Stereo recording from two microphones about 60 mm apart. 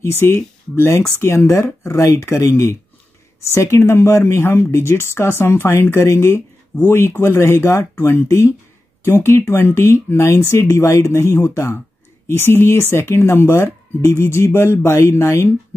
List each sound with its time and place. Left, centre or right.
0.0 s speech: left
14.2 s a sound: left
15.0 s speech: left